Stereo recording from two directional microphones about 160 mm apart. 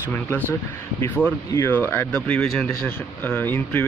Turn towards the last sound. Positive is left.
turn(degrees=15)  # may be behind; listen again after turning